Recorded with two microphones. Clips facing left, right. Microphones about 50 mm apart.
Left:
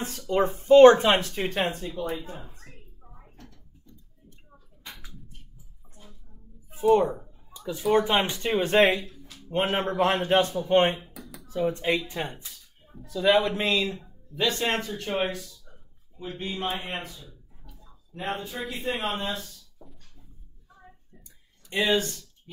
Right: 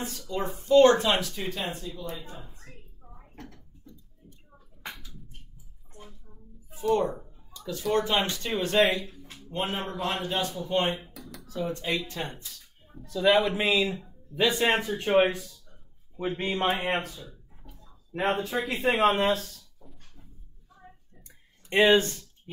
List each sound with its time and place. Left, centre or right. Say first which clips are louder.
0.3 s speech: left 5 dB; left
2.7 s a sound: right 1 dB; centre
3.3 s a sound: right 9 dB; right
6.7 s speech: left 5 dB; left
9.0 s music: right 1 dB; right
9.5 s speech: left 5 dB; left
11.4 s speech: left 5 dB; left
12.8 s speech: even; centre; by 15.4 s right
16.3 s speech: right 4 dB; right
18.1 s speech: right 5 dB; right
21.6 s speech: right 4 dB; right